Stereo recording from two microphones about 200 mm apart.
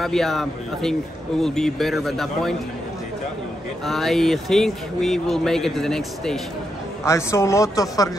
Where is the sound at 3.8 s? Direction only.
Centre (ahead or behind).